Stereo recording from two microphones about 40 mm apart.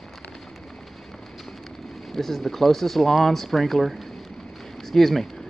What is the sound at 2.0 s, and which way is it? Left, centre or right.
Speech, centre.